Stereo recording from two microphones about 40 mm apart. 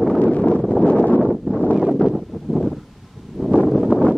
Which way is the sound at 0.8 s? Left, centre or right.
Left.